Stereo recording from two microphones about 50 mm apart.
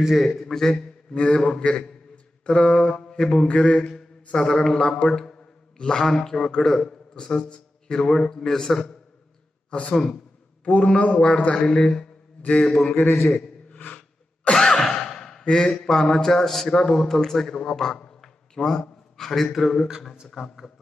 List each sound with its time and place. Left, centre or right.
0.0 s a man's voice: centre
3.4 s speech: left
9.7 s a man's voice: left
12.4 s mantra: left
12.6 s a man's voice: centre
13.7 s a sound: left
14.5 s speech: centre